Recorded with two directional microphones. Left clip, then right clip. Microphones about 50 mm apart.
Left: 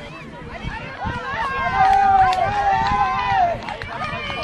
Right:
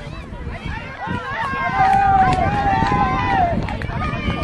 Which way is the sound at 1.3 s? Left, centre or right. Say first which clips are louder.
Even; centre.